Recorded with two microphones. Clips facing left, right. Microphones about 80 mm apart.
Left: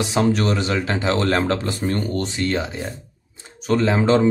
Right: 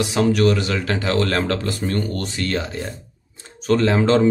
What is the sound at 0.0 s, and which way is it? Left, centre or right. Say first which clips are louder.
Speech: right 2 dB; left.